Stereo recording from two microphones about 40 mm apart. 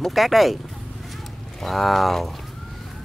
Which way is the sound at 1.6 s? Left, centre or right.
Centre.